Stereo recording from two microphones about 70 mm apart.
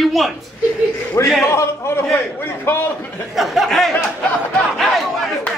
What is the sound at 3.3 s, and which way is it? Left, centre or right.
Speech, centre.